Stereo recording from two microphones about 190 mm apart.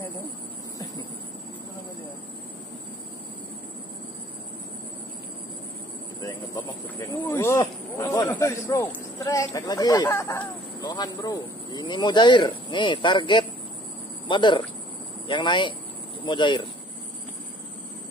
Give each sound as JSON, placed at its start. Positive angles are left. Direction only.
{"t": 7.1, "sound": "speech", "side_deg": 15}